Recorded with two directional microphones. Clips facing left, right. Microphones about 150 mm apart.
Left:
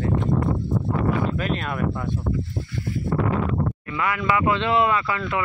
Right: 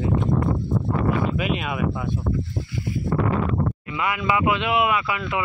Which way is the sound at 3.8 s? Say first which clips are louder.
Even; 15° right (ahead or behind).